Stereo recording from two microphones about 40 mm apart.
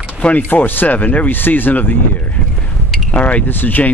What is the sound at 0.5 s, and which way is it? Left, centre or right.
Speech, left.